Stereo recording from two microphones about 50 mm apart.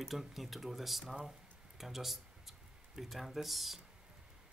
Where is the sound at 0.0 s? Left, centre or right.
Centre.